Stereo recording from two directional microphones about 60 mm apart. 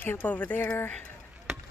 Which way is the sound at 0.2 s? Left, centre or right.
Left.